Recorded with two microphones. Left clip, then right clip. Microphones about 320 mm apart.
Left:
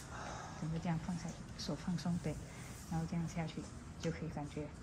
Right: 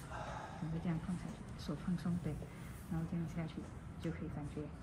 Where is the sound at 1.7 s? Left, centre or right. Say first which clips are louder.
Left 1 dB; left.